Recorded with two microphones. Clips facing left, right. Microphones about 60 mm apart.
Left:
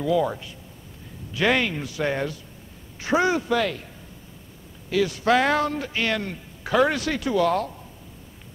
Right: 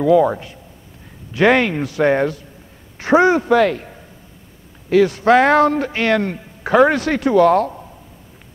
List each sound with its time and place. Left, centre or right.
0.0 s speech: right